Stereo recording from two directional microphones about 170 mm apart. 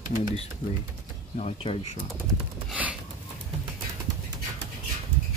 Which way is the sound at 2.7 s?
5° right (ahead or behind).